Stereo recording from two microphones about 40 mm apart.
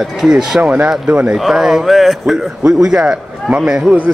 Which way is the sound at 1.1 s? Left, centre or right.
Right.